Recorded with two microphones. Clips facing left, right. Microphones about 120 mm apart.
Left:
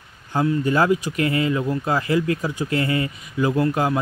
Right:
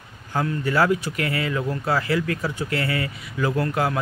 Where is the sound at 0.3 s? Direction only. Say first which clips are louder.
Left 4 dB; 20° left (ahead or behind).